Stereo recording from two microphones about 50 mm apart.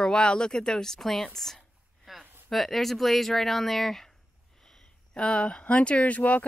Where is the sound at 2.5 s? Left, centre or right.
Centre.